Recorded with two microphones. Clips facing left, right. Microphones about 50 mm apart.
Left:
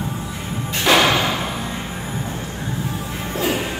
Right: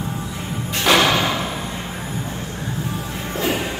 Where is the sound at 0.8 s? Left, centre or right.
Centre.